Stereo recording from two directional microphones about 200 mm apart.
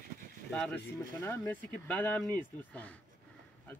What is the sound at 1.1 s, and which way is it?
Speech, 15° left (ahead or behind).